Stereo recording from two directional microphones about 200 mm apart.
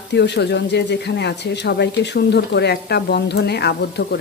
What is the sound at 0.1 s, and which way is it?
Speech, 60° left (ahead or behind).